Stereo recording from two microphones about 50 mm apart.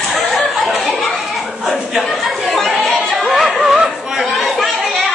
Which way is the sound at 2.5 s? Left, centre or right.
Centre.